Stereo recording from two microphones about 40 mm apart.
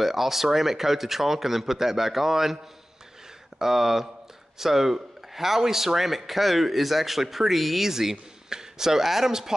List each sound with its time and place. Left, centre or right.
0.0 s a man's voice: centre